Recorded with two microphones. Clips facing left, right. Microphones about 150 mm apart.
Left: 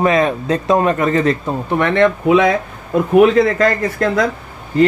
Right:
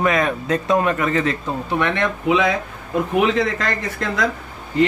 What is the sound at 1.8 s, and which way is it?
Speech, 50° left (ahead or behind).